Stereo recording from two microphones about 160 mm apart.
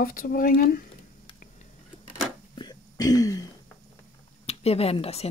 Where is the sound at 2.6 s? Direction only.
25° left (ahead or behind).